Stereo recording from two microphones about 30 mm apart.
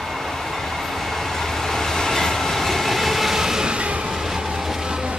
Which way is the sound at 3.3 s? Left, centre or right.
Centre.